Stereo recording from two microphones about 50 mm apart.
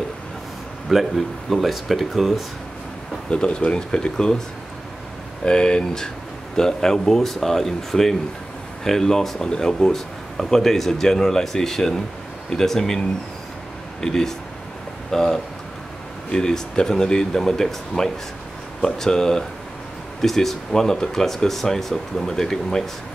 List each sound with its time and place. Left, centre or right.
0.9 s speech: centre
3.3 s speech: centre
5.4 s speech: centre
14.0 s speech: centre